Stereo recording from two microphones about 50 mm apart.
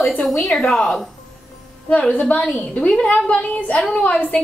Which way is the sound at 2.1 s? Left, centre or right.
Left.